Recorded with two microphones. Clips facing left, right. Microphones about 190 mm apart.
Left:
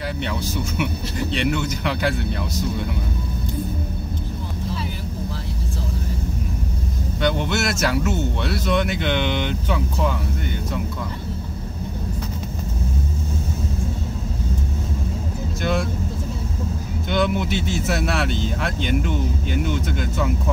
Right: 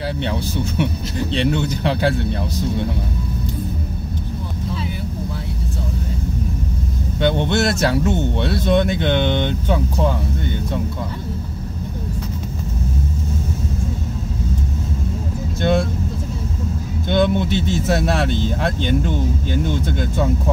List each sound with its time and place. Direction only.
0.2 s speech: 30° right (ahead or behind)
7.2 s speech: 30° right (ahead or behind)
15.6 s speech: 30° right (ahead or behind)
17.1 s speech: 30° right (ahead or behind)